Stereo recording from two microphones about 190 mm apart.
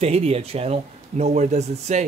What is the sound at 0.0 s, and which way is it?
A man's voice, 35° right (ahead or behind).